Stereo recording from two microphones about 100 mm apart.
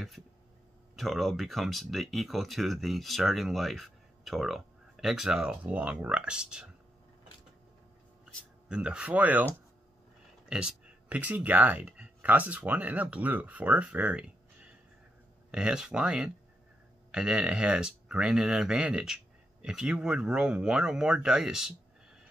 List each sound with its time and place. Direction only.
0.9 s speech: centre (ahead or behind)
8.6 s speech: 10° right (ahead or behind)
10.5 s speech: 10° right (ahead or behind)
15.5 s speech: 5° right (ahead or behind)